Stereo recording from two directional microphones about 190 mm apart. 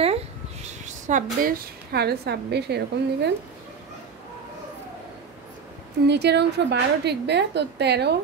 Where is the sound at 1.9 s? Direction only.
60° right (ahead or behind).